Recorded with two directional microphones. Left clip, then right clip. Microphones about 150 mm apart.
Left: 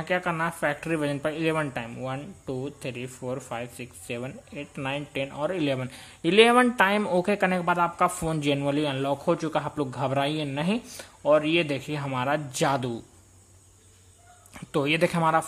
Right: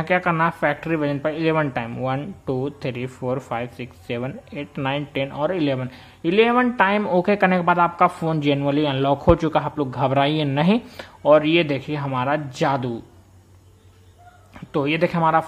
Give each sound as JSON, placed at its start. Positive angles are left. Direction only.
{"t": 0.0, "sound": "speech", "side_deg": 5}
{"t": 6.8, "sound": "speech", "side_deg": 15}
{"t": 9.6, "sound": "speech", "side_deg": 10}
{"t": 14.5, "sound": "speech", "side_deg": 20}